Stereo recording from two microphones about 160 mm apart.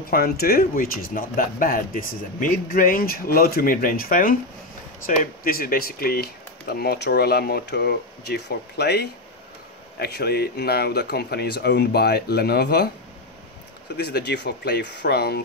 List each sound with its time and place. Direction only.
0.1 s speech: 70° left (ahead or behind); by 12.9 s 85° left
13.9 s speech: 90° left